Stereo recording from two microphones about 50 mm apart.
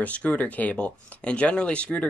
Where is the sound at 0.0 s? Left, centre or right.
Left.